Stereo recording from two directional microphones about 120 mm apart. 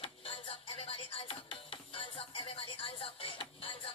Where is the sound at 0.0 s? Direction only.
50° left (ahead or behind).